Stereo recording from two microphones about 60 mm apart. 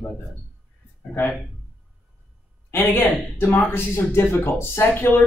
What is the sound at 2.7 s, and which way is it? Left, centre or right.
Speech, left.